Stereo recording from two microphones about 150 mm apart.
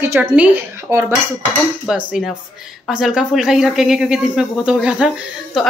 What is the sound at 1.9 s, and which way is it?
Speech, 5° right (ahead or behind).